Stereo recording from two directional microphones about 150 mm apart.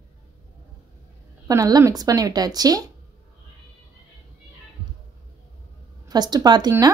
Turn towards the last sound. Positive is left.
turn(degrees=-25)  # may be behind; listen again after turning